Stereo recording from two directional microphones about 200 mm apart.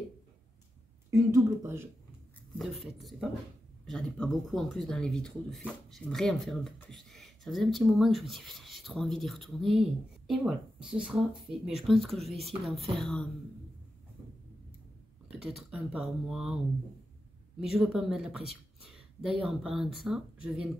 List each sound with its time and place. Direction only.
1.1 s speech: 15° right (ahead or behind)
2.6 s speech: centre (ahead or behind)
15.2 s speech: 5° right (ahead or behind)
17.6 s speech: centre (ahead or behind)